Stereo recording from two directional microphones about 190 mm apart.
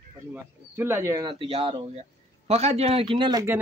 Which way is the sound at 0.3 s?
10° right (ahead or behind).